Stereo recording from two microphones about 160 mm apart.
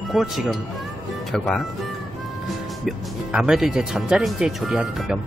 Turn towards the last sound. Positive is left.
turn(degrees=-5)  # may be behind; listen again after turning